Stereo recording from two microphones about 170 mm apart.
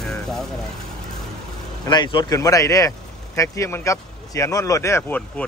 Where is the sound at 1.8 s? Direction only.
25° left (ahead or behind); by 5.4 s 5° left (ahead or behind).